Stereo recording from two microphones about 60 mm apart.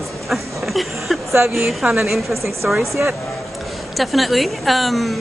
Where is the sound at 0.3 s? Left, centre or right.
Centre.